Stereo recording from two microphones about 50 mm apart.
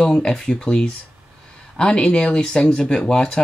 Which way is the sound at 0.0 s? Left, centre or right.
Centre.